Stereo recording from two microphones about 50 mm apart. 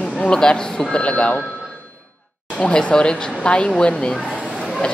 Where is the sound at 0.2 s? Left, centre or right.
Centre.